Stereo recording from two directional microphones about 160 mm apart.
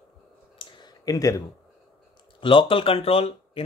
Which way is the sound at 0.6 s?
25° left (ahead or behind).